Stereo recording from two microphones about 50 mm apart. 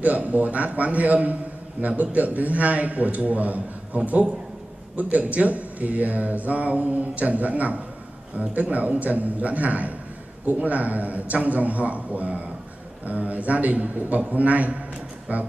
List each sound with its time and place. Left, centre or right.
0.0 s a man's voice: right